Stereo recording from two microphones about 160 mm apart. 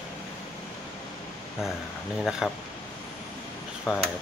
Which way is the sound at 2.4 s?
Centre (ahead or behind).